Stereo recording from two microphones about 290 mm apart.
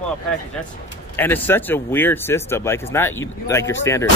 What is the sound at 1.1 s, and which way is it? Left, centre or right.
Speech, centre.